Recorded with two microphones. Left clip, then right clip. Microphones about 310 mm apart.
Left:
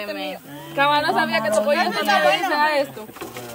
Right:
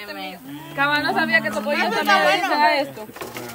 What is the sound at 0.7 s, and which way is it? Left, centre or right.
Speech, left.